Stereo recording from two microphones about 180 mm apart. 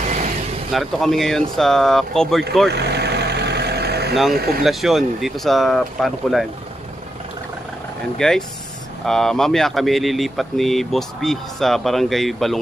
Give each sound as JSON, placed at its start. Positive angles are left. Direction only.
{"t": 0.0, "sound": "vehicle", "side_deg": -40}
{"t": 0.7, "sound": "speech", "side_deg": 0}
{"t": 2.7, "sound": "vehicle", "side_deg": -65}
{"t": 4.3, "sound": "speech", "side_deg": -60}
{"t": 4.6, "sound": "speech", "side_deg": 0}
{"t": 8.2, "sound": "speech", "side_deg": 5}